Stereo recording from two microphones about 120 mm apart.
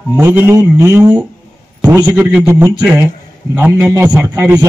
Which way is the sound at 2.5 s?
25° right (ahead or behind).